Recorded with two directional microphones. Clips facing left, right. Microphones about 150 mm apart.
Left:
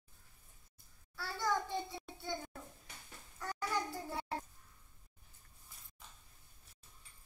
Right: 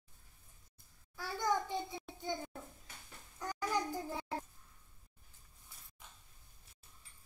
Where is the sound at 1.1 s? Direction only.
15° right (ahead or behind).